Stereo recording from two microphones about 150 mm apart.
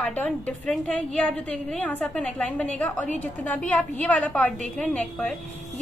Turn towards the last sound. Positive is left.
turn(degrees=10)  # may be behind; listen again after turning